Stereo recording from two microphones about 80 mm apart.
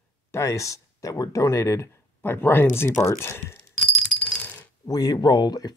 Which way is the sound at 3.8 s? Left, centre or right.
Centre.